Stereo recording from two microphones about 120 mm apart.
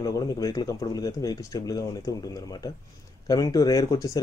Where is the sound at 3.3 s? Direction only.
30° left (ahead or behind).